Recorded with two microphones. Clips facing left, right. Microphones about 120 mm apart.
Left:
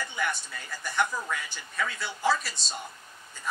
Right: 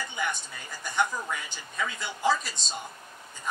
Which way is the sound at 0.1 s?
15° right (ahead or behind).